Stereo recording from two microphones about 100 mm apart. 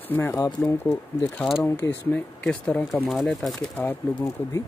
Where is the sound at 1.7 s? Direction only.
15° left (ahead or behind).